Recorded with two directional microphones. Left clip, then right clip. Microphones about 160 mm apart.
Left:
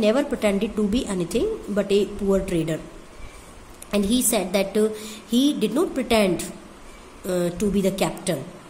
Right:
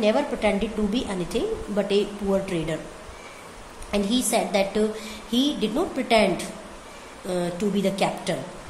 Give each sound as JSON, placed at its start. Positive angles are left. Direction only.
{"t": 0.0, "sound": "a woman's voice", "side_deg": 50}
{"t": 3.9, "sound": "a woman's voice", "side_deg": 50}